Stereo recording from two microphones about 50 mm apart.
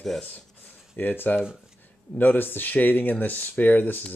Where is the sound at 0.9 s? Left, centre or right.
Left.